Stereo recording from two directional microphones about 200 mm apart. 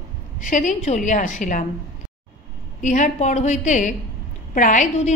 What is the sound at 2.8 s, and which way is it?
A woman's voice, 35° left (ahead or behind).